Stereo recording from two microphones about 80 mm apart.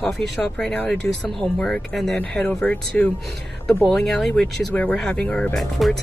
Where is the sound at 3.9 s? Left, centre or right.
Centre.